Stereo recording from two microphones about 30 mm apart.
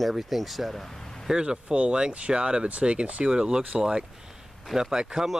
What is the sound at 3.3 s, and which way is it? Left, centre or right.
Speech, right.